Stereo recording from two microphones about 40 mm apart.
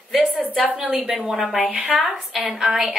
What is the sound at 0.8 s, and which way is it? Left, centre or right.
Speech, centre.